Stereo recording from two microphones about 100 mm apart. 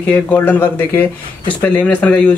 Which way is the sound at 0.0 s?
15° left (ahead or behind).